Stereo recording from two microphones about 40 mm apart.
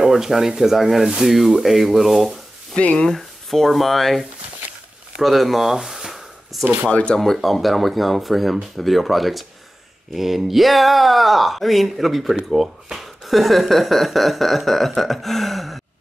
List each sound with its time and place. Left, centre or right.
0.0 s speech: centre
2.8 s speech: left
3.2 s speech: centre
5.2 s a sound: centre
6.9 s speech: left
7.2 s speech: centre